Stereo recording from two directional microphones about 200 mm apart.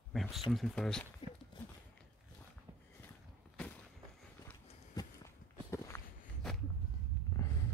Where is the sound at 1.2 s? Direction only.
25° left (ahead or behind).